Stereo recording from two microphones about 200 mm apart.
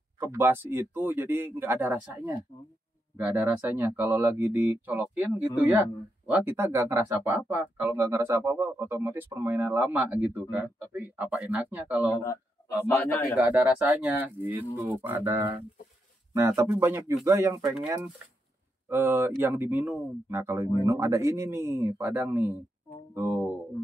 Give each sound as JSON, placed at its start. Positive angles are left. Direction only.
{"t": 0.2, "sound": "speech", "side_deg": -10}
{"t": 12.1, "sound": "speech", "side_deg": 15}
{"t": 13.6, "sound": "speech", "side_deg": -10}
{"t": 18.9, "sound": "speech", "side_deg": -10}